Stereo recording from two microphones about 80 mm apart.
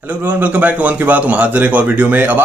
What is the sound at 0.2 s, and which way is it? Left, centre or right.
A man's voice, centre.